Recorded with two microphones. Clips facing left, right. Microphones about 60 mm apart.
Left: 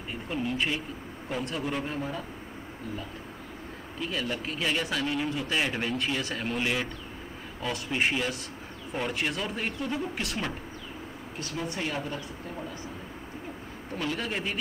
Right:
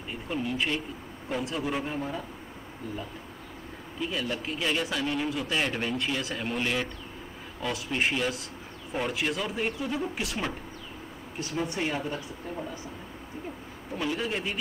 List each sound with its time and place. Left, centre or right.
0.1 s a man's voice: centre
4.0 s a man's voice: centre
13.9 s a man's voice: centre